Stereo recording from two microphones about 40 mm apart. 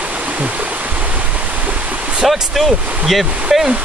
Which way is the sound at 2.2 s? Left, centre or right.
Centre.